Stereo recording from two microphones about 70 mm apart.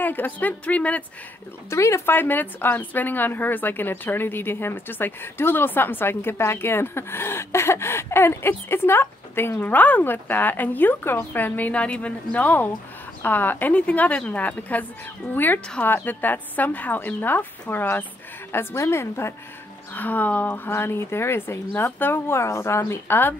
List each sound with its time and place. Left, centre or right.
0.0 s a woman's voice: left
1.7 s a woman's voice: left
19.9 s a woman's voice: left